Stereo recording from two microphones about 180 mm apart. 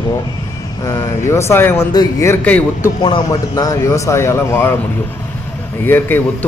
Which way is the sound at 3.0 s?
25° left (ahead or behind).